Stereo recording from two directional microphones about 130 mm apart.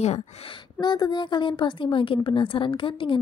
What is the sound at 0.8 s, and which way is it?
Speech, 35° left (ahead or behind).